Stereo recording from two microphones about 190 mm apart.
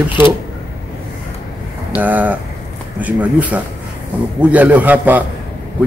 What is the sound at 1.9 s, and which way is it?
A man's voice, 10° right (ahead or behind).